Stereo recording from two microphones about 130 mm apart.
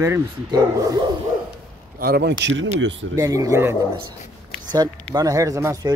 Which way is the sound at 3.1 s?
25° right (ahead or behind).